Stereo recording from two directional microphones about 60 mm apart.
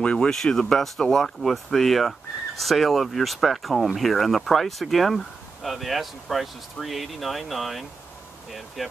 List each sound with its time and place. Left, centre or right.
0.0 s speech: centre
0.3 s speech: centre